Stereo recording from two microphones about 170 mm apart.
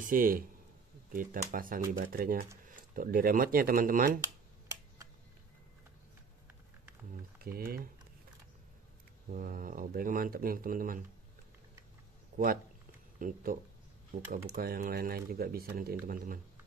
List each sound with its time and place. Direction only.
0.1 s speech: 55° right (ahead or behind)
7.4 s speech: 60° right (ahead or behind)
9.3 s speech: 55° right (ahead or behind)
12.3 s a sound: 55° right (ahead or behind)
13.2 s speech: 55° right (ahead or behind)